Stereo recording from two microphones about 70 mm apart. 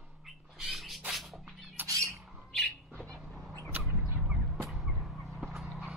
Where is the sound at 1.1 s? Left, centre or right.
Centre.